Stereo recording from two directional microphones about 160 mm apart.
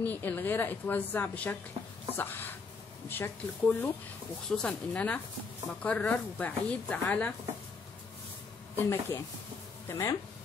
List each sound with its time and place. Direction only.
0.0 s speech: 10° left (ahead or behind)
8.7 s speech: 15° left (ahead or behind)